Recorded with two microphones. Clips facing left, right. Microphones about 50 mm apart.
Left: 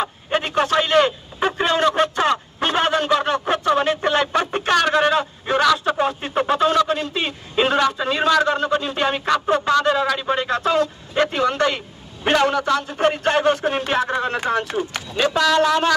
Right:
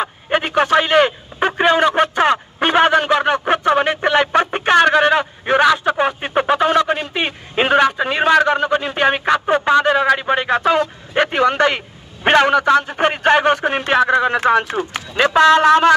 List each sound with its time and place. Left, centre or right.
0.0 s a sound: right
2.0 s speech: right
9.3 s speech: right
12.6 s speech: right
14.6 s speech: right